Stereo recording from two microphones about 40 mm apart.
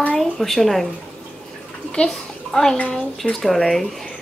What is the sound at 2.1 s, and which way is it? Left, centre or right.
A child's voice, centre.